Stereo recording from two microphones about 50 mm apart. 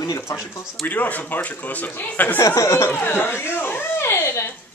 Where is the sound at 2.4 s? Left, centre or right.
Left.